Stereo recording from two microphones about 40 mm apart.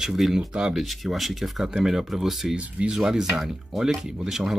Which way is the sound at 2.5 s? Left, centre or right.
Right.